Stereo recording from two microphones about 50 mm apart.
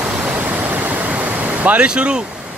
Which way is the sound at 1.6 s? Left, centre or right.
Right.